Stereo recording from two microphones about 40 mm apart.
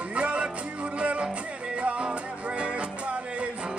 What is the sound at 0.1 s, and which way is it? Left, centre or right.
Music, right.